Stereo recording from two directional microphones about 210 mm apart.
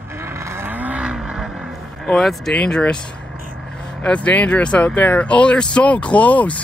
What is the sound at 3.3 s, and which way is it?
Vehicle, 40° right (ahead or behind).